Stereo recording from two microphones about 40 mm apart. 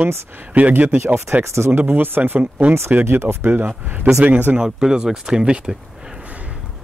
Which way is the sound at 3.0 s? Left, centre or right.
Right.